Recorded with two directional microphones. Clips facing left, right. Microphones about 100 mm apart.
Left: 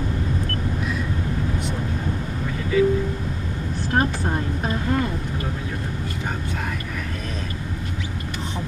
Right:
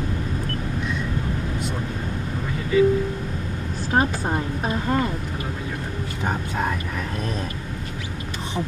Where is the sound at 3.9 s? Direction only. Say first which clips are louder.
Right 1 dB; 10° right (ahead or behind).